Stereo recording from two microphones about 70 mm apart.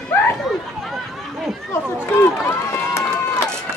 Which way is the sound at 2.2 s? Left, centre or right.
Left.